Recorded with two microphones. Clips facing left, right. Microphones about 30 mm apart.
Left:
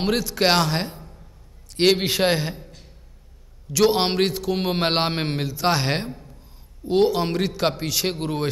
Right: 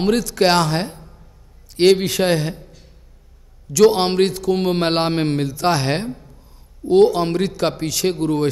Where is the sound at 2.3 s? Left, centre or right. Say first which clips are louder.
Right 3 dB; centre.